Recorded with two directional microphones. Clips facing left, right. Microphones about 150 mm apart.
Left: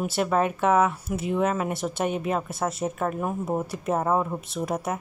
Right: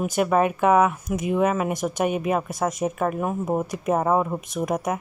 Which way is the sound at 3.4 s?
15° right (ahead or behind).